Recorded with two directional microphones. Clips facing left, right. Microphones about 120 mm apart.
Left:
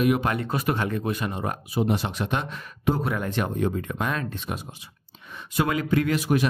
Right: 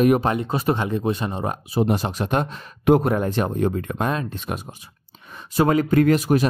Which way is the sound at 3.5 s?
45° right (ahead or behind).